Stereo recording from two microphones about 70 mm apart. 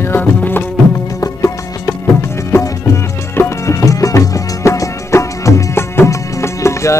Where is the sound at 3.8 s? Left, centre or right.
Left.